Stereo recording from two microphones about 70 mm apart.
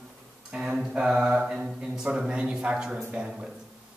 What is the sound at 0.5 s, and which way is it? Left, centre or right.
A man's voice, centre.